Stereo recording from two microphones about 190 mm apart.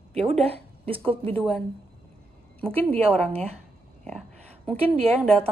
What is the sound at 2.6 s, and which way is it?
Speech, 5° left (ahead or behind).